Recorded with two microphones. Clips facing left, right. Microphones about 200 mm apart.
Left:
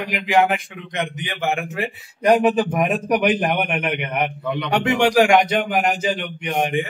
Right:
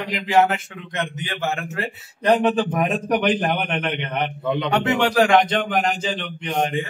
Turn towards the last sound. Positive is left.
turn(degrees=15)  # may be behind; listen again after turning